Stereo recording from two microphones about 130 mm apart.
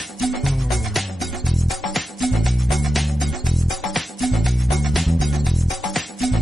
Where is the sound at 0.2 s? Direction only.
Centre (ahead or behind).